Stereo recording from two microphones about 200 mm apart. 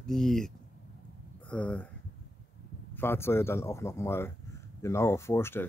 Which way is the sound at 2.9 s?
10° left (ahead or behind).